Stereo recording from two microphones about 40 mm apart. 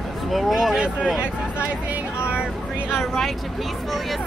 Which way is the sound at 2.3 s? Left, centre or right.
Right.